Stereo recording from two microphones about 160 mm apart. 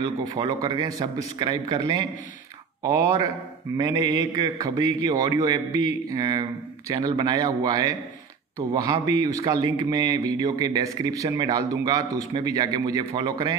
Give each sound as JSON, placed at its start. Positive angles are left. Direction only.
{"t": 0.0, "sound": "a man's voice", "side_deg": -30}